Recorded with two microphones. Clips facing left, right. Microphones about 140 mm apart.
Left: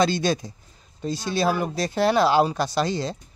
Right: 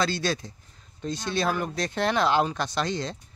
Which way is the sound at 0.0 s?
20° left (ahead or behind).